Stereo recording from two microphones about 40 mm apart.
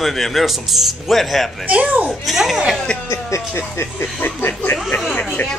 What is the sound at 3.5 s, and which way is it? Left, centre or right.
Speech, left.